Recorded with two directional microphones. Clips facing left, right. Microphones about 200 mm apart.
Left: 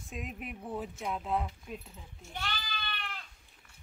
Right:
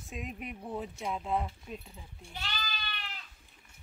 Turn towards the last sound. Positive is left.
turn(degrees=55)  # may be behind; listen again after turning